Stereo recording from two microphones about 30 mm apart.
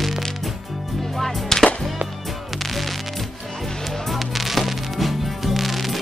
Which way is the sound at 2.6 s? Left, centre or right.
Centre.